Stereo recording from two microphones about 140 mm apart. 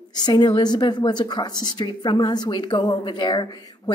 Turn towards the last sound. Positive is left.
turn(degrees=30)  # may be behind; listen again after turning